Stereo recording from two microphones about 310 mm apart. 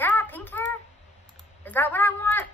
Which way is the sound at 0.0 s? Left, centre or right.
Centre.